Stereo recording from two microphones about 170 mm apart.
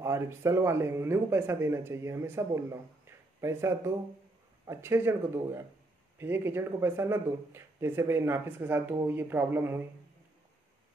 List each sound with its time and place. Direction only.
0.0 s speech: 15° right (ahead or behind)